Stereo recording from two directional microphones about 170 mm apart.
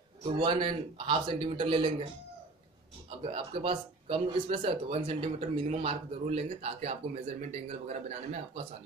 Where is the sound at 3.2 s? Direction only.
35° right (ahead or behind).